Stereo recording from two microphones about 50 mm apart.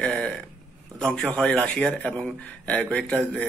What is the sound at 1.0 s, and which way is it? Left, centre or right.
A man's voice, centre.